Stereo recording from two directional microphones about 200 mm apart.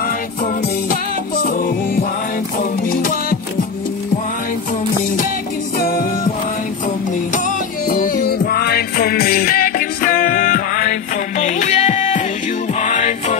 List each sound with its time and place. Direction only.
1.4 s music: 45° left (ahead or behind)
5.8 s music: 45° left (ahead or behind)
7.3 s music: 40° left (ahead or behind)